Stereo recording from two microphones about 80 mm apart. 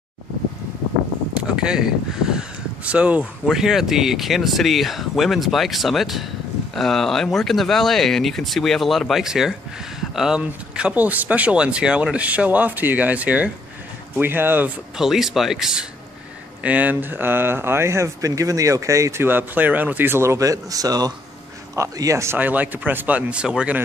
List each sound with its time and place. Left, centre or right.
1.3 s speech: centre
3.4 s speech: centre; by 14.7 s right
15.0 s speech: centre
16.6 s speech: centre; by 19.2 s right
19.2 s speech: right
22.4 s speech: right